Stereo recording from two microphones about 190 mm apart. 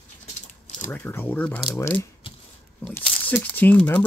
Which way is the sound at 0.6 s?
40° left (ahead or behind).